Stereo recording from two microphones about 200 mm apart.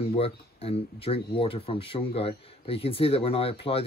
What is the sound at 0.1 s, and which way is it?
Speech, 30° left (ahead or behind).